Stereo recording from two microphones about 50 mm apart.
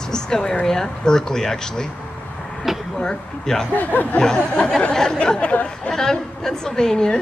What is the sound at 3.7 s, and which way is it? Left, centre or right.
Speech, left.